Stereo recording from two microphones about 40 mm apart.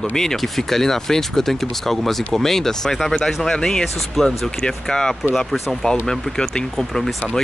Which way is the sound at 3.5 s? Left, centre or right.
Centre.